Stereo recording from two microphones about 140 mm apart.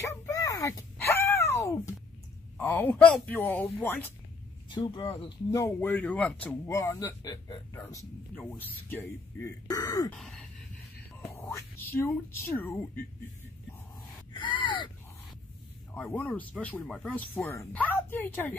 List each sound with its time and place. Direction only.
0.3 s a sound: 25° left (ahead or behind)
2.5 s speech: 10° left (ahead or behind)
4.6 s speech: 35° left (ahead or behind)
5.5 s speech: 20° left (ahead or behind)
9.7 s speech: 25° left (ahead or behind)
10.1 s gasp: centre (ahead or behind)
11.3 s speech: 20° left (ahead or behind)
14.3 s gasp: 35° left (ahead or behind)
16.1 s speech: 10° left (ahead or behind)